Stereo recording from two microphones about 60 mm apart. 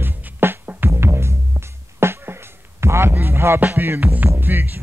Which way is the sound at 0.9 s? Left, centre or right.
Right.